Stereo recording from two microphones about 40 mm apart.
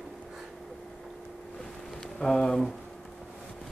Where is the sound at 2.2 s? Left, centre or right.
Centre.